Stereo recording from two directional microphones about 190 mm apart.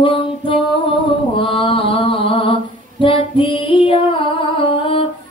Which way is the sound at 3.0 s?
25° left (ahead or behind).